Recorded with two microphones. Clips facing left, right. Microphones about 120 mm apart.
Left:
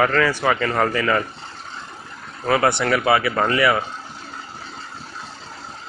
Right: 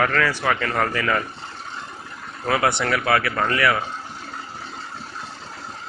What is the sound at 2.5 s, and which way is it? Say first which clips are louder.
Speech: left 3 dB; centre (ahead or behind).